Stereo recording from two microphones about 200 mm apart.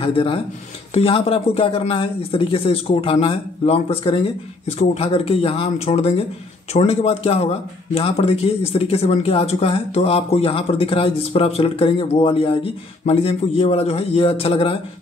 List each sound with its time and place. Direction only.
0.0 s speech: 25° left (ahead or behind)